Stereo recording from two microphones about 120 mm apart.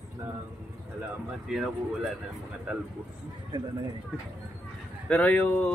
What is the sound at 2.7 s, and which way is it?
Speech, 10° right (ahead or behind).